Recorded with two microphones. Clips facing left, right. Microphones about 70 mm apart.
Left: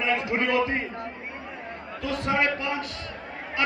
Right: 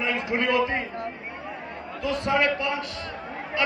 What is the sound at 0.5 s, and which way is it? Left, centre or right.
Speech, centre.